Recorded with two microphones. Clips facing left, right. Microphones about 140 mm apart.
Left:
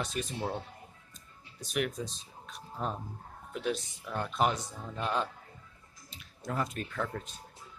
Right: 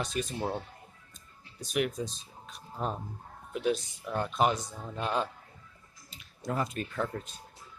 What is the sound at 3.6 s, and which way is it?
Speech, 5° right (ahead or behind).